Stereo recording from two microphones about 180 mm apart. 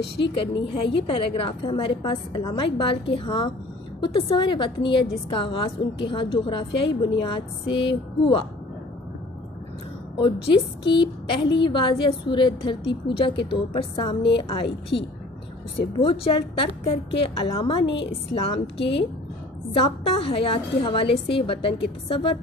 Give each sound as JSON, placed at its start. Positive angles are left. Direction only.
{"t": 0.2, "sound": "a woman's voice", "side_deg": 30}
{"t": 7.7, "sound": "a woman's voice", "side_deg": 85}
{"t": 10.1, "sound": "a woman's voice", "side_deg": 30}
{"t": 14.9, "sound": "a woman's voice", "side_deg": 75}
{"t": 16.0, "sound": "a woman's voice", "side_deg": 30}
{"t": 17.8, "sound": "a woman's voice", "side_deg": 80}
{"t": 18.1, "sound": "a woman's voice", "side_deg": 35}